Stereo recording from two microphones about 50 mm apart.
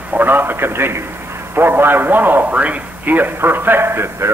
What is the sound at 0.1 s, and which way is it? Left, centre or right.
A man's voice, right.